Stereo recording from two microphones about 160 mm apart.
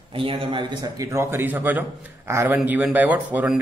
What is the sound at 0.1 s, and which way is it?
Speech, 35° right (ahead or behind).